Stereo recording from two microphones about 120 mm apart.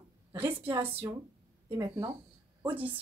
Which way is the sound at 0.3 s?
20° right (ahead or behind).